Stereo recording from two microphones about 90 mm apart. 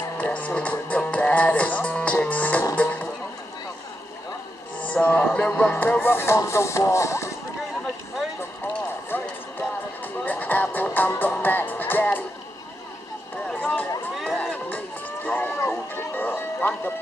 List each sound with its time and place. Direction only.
0.2 s music: 15° left (ahead or behind)
4.8 s speech: 15° left (ahead or behind)
5.5 s music: 20° left (ahead or behind)
9.1 s clip-clop: 25° left (ahead or behind)
10.2 s music: 20° left (ahead or behind)
14.3 s run: 15° left (ahead or behind)
15.2 s music: 20° left (ahead or behind)